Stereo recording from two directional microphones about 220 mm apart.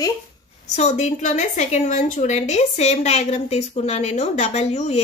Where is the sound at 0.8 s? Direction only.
30° left (ahead or behind).